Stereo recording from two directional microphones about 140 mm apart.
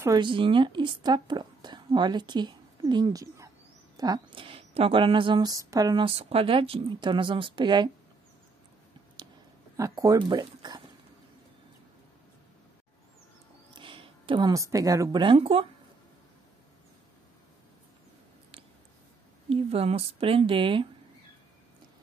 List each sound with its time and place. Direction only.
0.2 s speech: 35° right (ahead or behind)
3.9 s a sound: 25° right (ahead or behind)
4.4 s a woman's voice: 40° right (ahead or behind)
6.0 s a woman's voice: 45° right (ahead or behind)
9.8 s a woman's voice: 25° right (ahead or behind)
13.7 s a sound: 40° right (ahead or behind)
14.5 s speech: 25° right (ahead or behind); by 15.6 s 40° right (ahead or behind)
19.5 s a woman's voice: 45° right (ahead or behind)